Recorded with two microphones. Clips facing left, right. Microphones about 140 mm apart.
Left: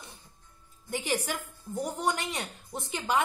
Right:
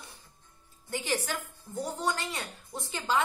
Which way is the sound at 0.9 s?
15° left (ahead or behind).